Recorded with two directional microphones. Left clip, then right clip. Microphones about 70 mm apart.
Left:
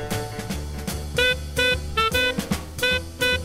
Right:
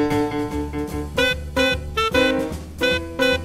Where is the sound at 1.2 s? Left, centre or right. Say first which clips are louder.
Right 1 dB; centre.